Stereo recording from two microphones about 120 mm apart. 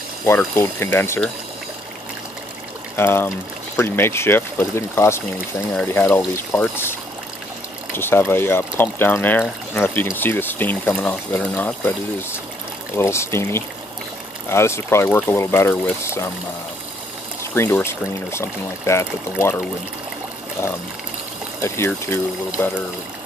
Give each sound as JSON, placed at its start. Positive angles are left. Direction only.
{"t": 0.6, "sound": "speech", "side_deg": 20}
{"t": 3.0, "sound": "speech", "side_deg": 20}
{"t": 7.9, "sound": "speech", "side_deg": 20}
{"t": 17.4, "sound": "speech", "side_deg": 20}
{"t": 20.6, "sound": "speech", "side_deg": 25}